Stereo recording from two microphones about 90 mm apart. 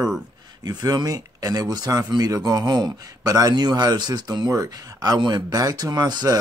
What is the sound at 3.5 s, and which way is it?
Speech, 55° right (ahead or behind).